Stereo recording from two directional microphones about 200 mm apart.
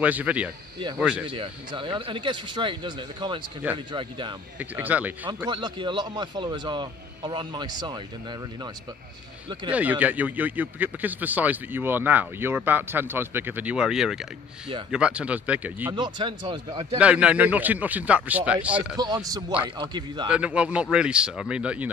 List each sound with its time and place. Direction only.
0.0 s a man's voice: 5° right (ahead or behind)
1.3 s a man's voice: 25° right (ahead or behind)
4.6 s a man's voice: 10° right (ahead or behind)
5.5 s a man's voice: 25° right (ahead or behind)
9.7 s a man's voice: 5° right (ahead or behind)
15.9 s a man's voice: 25° right (ahead or behind)
17.0 s a man's voice: 5° right (ahead or behind)
18.9 s a man's voice: 20° right (ahead or behind)
20.2 s speech: 5° right (ahead or behind)